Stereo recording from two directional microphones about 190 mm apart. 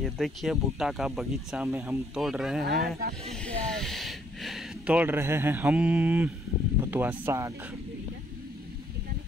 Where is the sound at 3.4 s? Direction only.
5° left (ahead or behind).